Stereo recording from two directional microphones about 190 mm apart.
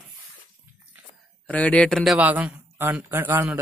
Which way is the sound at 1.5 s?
5° left (ahead or behind).